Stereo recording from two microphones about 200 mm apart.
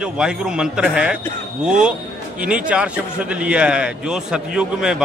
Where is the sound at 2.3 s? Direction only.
5° right (ahead or behind).